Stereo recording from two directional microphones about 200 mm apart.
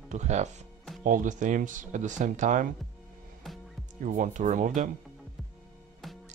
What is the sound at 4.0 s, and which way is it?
Speech, 40° right (ahead or behind).